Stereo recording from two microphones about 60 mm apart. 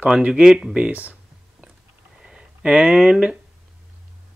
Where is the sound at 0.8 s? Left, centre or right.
Right.